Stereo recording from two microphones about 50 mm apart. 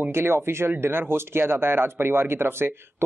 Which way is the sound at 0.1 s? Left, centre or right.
Right.